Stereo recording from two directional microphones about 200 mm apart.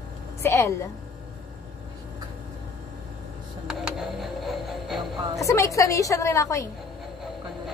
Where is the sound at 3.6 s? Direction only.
Centre (ahead or behind).